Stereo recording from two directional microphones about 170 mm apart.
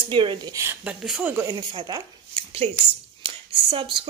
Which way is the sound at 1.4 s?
25° right (ahead or behind).